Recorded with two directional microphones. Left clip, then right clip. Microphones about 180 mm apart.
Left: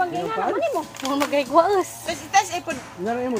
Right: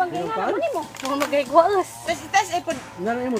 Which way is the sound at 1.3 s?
35° left (ahead or behind).